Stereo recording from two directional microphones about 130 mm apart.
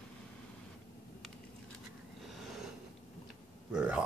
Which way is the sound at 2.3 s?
Centre (ahead or behind).